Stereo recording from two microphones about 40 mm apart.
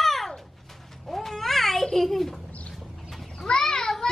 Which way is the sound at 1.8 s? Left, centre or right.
Centre.